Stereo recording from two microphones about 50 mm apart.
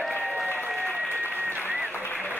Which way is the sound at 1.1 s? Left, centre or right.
Left.